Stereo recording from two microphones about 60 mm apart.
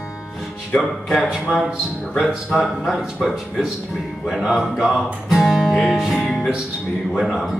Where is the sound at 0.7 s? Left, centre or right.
Centre.